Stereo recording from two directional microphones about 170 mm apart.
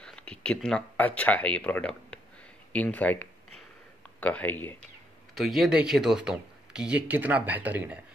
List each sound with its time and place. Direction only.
0.0 s speech: 5° left (ahead or behind)
2.7 s a sound: 10° left (ahead or behind)
4.2 s speech: 10° left (ahead or behind)
5.3 s speech: centre (ahead or behind)